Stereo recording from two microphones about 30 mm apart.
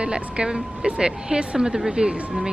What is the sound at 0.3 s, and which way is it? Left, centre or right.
Speech, right.